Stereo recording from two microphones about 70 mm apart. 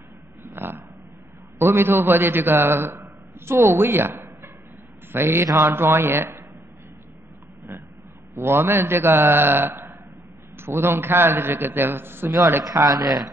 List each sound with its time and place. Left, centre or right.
0.4 s a sound: right
1.6 s a man's voice: right
8.4 s a man's voice: right
12.6 s speech: right